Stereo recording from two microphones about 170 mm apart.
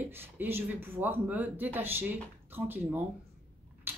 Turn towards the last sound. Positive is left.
turn(degrees=-10)  # may be behind; listen again after turning